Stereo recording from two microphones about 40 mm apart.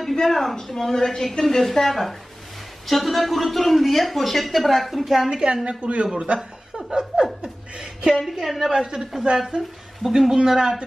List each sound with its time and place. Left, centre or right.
0.1 s a woman's voice: centre
5.3 s a man's voice: right
6.9 s laughter: centre
7.4 s chuckle: right
8.1 s speech: centre
8.8 s a man's voice: centre